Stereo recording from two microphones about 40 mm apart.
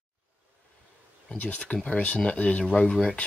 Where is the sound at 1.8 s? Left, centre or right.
Left.